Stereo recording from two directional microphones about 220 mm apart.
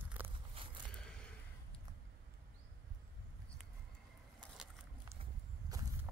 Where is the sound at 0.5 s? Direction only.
25° right (ahead or behind).